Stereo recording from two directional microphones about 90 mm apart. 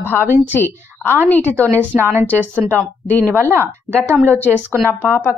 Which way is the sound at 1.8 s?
25° right (ahead or behind).